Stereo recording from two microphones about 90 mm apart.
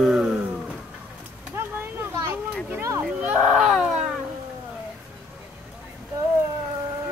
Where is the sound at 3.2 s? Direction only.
10° right (ahead or behind).